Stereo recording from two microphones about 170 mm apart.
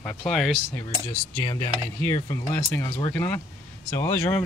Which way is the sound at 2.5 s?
10° left (ahead or behind).